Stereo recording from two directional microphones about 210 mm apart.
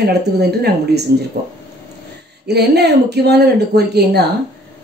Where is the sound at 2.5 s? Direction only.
50° right (ahead or behind).